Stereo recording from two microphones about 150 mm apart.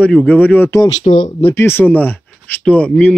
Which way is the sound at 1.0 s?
60° left (ahead or behind).